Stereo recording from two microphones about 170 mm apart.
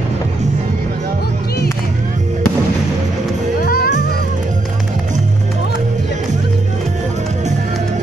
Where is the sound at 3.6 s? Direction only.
60° left (ahead or behind).